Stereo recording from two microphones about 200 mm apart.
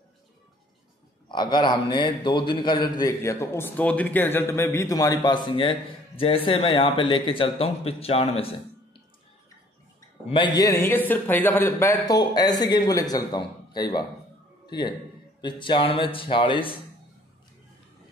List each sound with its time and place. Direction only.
1.3 s a man's voice: 20° left (ahead or behind)
10.2 s a man's voice: 25° left (ahead or behind)